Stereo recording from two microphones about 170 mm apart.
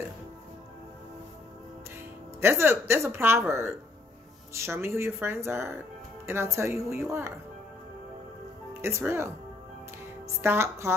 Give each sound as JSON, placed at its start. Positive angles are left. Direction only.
{"t": 2.4, "sound": "a woman's voice", "side_deg": -15}
{"t": 8.8, "sound": "a woman's voice", "side_deg": -15}
{"t": 10.4, "sound": "a woman's voice", "side_deg": -15}